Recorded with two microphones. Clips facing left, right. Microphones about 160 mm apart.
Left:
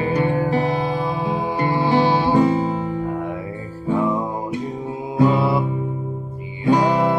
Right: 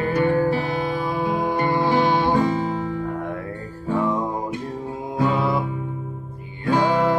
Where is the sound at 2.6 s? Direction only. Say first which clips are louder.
Left 2 dB; 20° left (ahead or behind).